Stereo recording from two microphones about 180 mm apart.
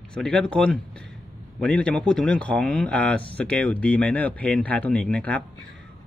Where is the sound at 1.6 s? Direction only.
5° left (ahead or behind).